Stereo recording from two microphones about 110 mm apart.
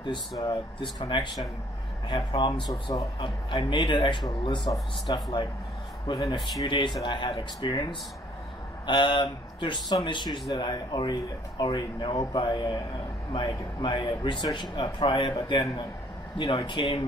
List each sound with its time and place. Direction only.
0.4 s speech: 40° left (ahead or behind)
2.7 s a man's voice: 30° left (ahead or behind)
3.2 s speech: 50° left (ahead or behind)
6.7 s speech: 45° left (ahead or behind)